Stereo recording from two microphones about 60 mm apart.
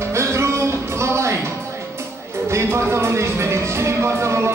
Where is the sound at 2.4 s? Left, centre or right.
Right.